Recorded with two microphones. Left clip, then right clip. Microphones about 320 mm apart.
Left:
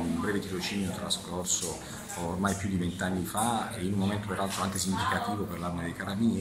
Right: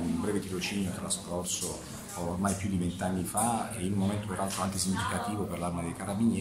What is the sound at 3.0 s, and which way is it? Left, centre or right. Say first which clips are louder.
Speech: left 1 dB; centre.